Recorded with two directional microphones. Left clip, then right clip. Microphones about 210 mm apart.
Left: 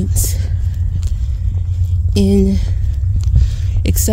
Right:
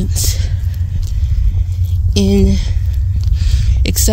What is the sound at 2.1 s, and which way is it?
Speech, 15° left (ahead or behind).